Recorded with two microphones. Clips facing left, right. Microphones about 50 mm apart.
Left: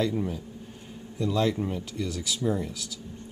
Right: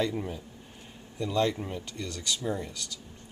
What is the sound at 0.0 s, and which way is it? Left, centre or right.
A man's voice, centre.